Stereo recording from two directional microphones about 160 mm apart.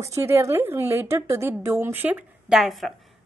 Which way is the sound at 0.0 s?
20° right (ahead or behind).